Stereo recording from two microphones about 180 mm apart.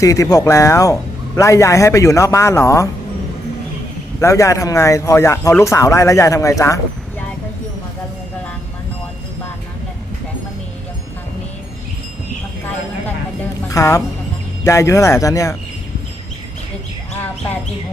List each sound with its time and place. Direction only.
0.0 s speech: 20° left (ahead or behind)
4.2 s speech: 15° left (ahead or behind)
13.7 s speech: 15° left (ahead or behind)